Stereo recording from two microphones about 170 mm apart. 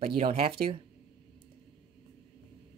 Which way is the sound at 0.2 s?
35° right (ahead or behind).